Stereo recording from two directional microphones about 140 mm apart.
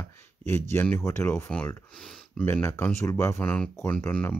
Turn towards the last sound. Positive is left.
turn(degrees=10)  # may be behind; listen again after turning